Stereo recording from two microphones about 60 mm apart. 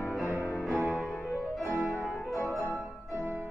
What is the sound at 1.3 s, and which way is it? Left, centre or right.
Music, right.